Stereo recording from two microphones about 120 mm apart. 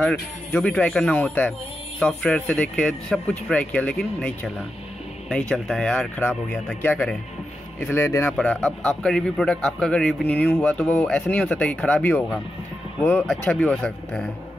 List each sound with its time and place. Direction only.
0.0 s a man's voice: 10° left (ahead or behind)
5.5 s a man's voice: 5° left (ahead or behind)
8.4 s a man's voice: 10° left (ahead or behind)